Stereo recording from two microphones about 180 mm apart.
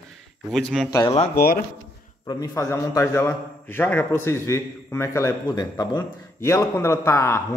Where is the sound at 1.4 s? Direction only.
55° left (ahead or behind).